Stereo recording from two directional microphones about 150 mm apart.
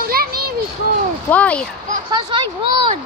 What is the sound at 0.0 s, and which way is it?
Children playing, 85° right.